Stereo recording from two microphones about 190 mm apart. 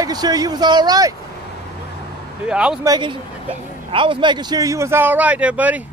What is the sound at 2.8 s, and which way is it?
Speech, 25° right (ahead or behind).